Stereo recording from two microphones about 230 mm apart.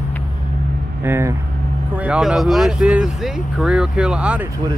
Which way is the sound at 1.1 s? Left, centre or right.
Centre.